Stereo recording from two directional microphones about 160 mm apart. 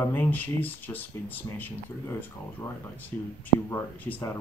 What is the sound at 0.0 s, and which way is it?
Speech, 10° left (ahead or behind).